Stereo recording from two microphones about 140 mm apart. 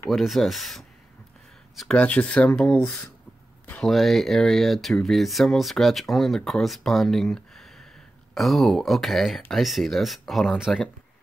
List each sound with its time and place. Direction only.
0.1 s speech: centre (ahead or behind)
2.0 s speech: 10° left (ahead or behind)
3.6 s a sound: 10° left (ahead or behind)
3.9 s speech: centre (ahead or behind)